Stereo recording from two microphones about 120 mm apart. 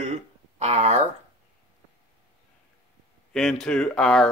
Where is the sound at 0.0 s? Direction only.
70° right (ahead or behind).